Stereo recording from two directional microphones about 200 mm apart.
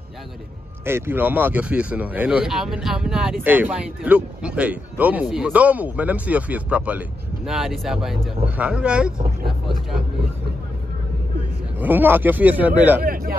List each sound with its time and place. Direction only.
0.8 s a man's voice: 10° right (ahead or behind)
11.8 s a man's voice: 10° right (ahead or behind)
13.0 s a sound: 45° right (ahead or behind)